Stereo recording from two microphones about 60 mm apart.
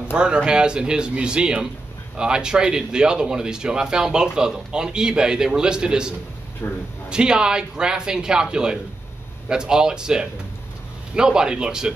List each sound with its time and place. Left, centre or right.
0.1 s speech: centre
6.6 s a man's voice: left
7.1 s speech: centre